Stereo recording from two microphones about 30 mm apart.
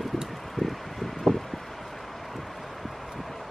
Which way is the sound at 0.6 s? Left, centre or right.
Centre.